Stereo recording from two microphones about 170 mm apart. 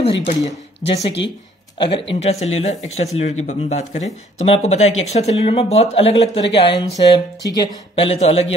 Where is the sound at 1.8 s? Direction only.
30° left (ahead or behind).